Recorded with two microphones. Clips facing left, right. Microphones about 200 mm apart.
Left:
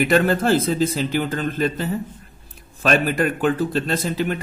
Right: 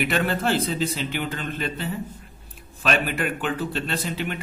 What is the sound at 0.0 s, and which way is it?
A man's voice, 40° left (ahead or behind).